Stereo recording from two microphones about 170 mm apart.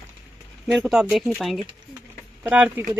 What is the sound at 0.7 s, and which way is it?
Speech, centre (ahead or behind).